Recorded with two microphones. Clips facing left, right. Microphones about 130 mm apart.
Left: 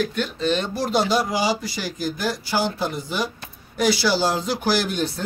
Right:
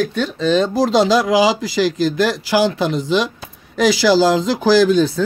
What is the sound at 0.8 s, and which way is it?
Speech, 90° right.